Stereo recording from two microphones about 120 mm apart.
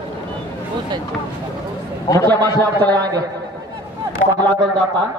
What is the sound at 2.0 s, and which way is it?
Speech, 30° left (ahead or behind).